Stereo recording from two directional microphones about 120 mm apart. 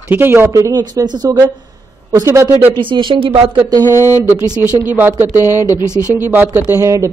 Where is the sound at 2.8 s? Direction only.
40° right (ahead or behind).